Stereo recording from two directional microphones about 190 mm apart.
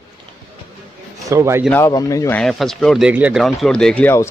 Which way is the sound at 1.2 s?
15° right (ahead or behind).